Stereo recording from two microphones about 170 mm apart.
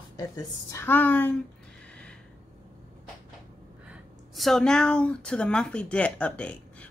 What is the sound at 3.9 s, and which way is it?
Speech, centre (ahead or behind).